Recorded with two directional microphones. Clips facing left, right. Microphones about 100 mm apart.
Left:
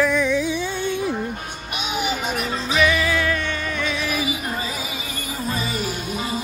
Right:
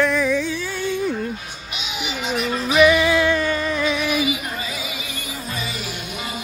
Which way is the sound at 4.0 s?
35° left (ahead or behind).